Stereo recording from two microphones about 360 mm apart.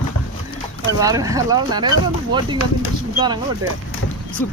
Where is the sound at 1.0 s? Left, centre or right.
Centre.